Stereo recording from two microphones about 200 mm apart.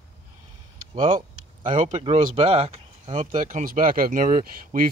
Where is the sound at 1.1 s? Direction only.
40° right (ahead or behind).